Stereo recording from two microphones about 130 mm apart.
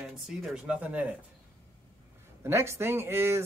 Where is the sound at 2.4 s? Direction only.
20° right (ahead or behind).